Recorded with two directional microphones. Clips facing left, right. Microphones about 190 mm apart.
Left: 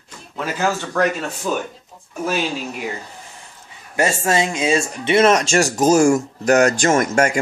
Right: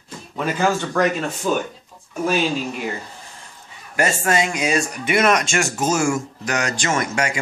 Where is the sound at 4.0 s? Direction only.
25° left (ahead or behind).